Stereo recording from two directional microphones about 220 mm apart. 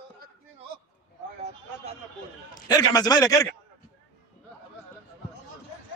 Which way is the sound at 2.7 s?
15° left (ahead or behind).